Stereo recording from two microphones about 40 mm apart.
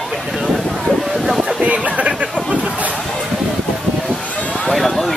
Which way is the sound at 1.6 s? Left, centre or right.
Right.